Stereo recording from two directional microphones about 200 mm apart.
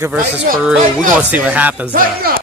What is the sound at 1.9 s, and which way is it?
Speech, 50° right (ahead or behind).